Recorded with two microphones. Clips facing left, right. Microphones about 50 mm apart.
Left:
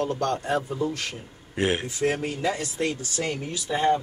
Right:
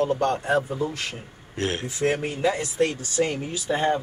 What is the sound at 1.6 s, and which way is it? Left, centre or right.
Speech, centre.